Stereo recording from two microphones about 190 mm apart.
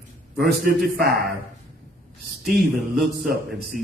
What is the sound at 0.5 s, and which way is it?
Speech, 55° right (ahead or behind).